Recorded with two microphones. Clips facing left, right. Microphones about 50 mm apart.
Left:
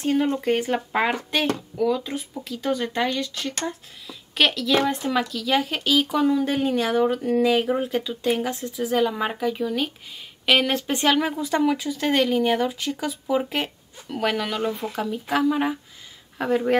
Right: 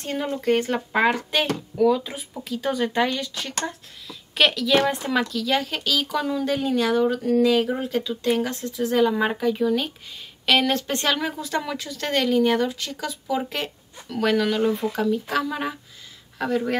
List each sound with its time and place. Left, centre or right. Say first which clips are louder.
0.0 s speech: left 4 dB; centre